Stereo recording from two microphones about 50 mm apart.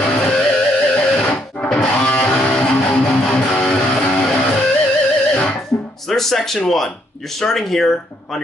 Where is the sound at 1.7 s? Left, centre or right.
Left.